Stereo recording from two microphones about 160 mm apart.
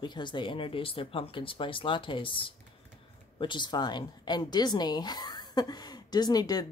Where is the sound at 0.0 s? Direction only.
30° left (ahead or behind).